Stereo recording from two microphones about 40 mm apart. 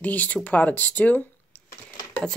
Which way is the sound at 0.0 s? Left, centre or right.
Left.